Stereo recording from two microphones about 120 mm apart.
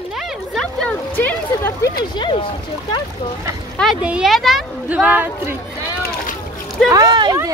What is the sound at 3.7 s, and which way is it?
Speech, centre (ahead or behind).